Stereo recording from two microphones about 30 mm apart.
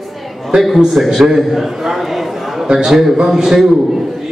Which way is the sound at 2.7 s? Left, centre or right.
Centre.